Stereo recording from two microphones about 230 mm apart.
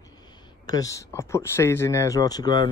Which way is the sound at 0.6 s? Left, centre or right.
Centre.